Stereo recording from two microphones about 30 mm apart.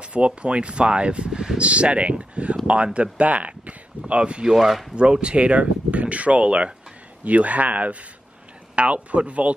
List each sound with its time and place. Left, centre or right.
0.0 s speech: right
4.1 s speech: right
4.6 s speech: centre
4.9 s speech: right
5.4 s speech: right
7.2 s speech: right